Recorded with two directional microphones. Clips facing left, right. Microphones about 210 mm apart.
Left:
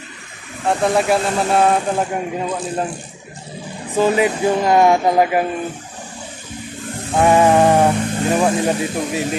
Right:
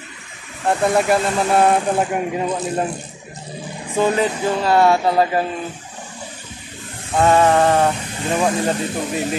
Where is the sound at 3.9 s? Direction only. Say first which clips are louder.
Left 2 dB; 10° left (ahead or behind).